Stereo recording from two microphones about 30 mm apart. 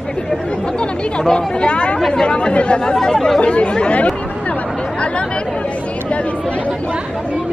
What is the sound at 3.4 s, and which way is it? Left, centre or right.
Speech, left.